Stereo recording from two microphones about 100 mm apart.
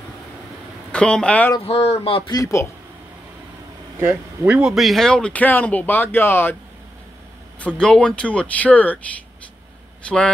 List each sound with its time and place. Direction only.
0.9 s speech: 10° left (ahead or behind)
1.7 s speech: 75° left (ahead or behind)
2.2 s a man's voice: 35° left (ahead or behind)
4.5 s speech: 10° right (ahead or behind); by 6.5 s 20° left (ahead or behind)
7.5 s speech: 10° left (ahead or behind)
10.0 s speech: 10° left (ahead or behind)